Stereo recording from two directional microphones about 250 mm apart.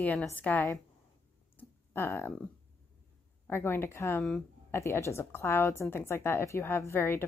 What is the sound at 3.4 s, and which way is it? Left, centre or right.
Speech, centre.